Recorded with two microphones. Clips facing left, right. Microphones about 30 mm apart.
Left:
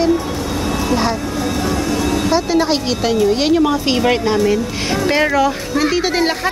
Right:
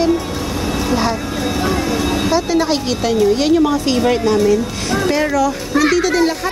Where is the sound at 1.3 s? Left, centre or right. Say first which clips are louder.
Right 1 dB; centre.